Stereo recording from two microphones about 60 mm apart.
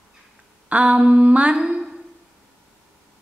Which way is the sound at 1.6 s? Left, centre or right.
Centre.